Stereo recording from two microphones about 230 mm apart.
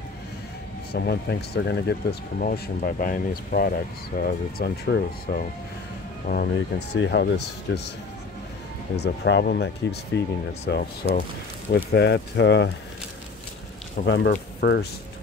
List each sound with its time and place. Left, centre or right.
0.9 s speech: left
8.9 s speech: left
14.0 s speech: left